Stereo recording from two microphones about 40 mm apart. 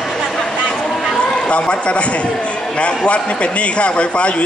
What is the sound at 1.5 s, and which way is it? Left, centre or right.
A man's voice, left.